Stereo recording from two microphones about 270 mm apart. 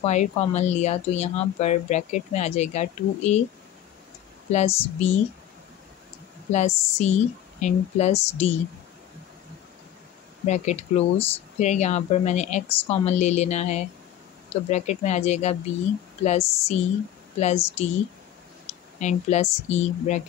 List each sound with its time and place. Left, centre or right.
0.0 s speech: left
4.5 s speech: left
6.5 s speech: left
10.4 s speech: left